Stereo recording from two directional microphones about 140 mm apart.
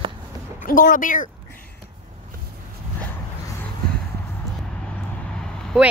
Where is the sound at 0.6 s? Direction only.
85° left.